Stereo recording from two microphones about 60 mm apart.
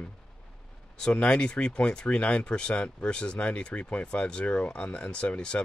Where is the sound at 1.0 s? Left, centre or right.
Centre.